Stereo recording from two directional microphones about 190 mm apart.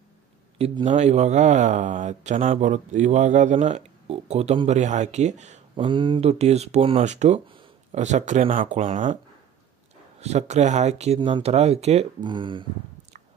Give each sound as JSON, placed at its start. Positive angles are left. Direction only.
{"t": 0.6, "sound": "speech", "side_deg": -35}
{"t": 5.8, "sound": "speech", "side_deg": -25}
{"t": 10.2, "sound": "speech", "side_deg": -35}